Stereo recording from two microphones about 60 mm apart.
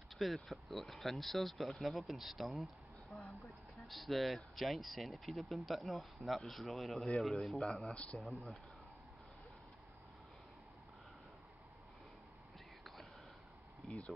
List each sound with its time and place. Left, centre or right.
0.2 s speech: centre
7.9 s speech: centre
8.2 s speech: centre